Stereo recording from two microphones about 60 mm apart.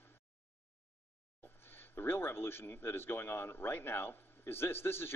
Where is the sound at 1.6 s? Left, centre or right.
Left.